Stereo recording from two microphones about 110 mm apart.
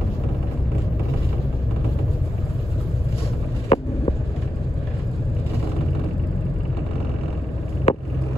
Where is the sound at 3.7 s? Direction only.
65° left (ahead or behind).